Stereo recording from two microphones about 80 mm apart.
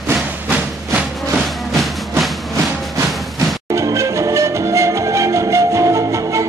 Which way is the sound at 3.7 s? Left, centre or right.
Right.